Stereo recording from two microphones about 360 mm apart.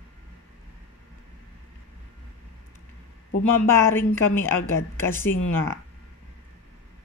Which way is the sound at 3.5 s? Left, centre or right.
Centre.